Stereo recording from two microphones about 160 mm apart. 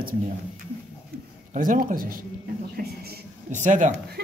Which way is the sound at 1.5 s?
60° right (ahead or behind).